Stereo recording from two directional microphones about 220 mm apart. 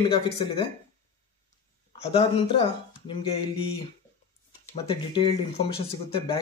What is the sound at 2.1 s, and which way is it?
Speech, 25° left (ahead or behind).